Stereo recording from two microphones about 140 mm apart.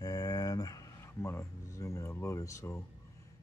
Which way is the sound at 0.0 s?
25° left (ahead or behind).